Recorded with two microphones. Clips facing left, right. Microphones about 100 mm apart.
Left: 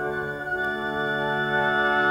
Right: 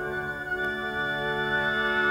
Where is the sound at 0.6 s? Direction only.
20° left (ahead or behind).